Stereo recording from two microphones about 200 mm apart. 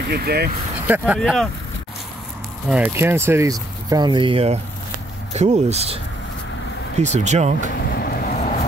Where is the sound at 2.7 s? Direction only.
10° right (ahead or behind); by 7.7 s 35° right (ahead or behind).